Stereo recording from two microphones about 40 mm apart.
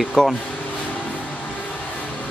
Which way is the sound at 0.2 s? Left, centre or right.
Centre.